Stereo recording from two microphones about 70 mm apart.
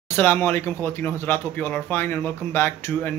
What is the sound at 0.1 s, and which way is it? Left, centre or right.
Speech, left.